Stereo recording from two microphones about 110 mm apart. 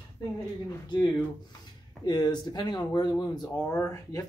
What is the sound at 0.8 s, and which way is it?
Speech, 45° left (ahead or behind).